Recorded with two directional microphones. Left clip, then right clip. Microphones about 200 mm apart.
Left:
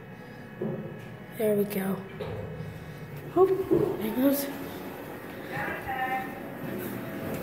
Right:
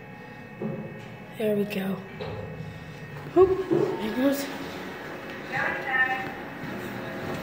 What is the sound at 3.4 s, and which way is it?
Speech, 15° right (ahead or behind).